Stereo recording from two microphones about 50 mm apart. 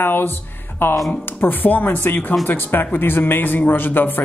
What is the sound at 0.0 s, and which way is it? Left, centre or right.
A man's voice, left.